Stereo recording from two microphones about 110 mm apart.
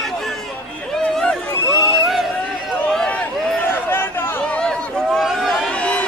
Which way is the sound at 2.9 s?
5° left (ahead or behind).